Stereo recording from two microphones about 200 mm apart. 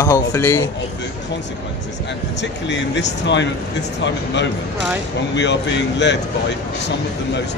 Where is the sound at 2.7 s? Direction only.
60° left (ahead or behind).